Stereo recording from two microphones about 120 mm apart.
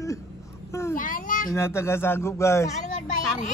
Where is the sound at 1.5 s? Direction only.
20° left (ahead or behind).